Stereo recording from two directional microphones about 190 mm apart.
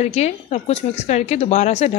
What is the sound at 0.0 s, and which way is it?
Speech, 35° left (ahead or behind).